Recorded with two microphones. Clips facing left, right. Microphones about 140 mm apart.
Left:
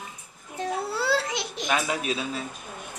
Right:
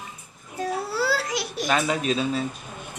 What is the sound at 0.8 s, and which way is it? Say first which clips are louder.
Babbling: left 1 dB; 25° left (ahead or behind).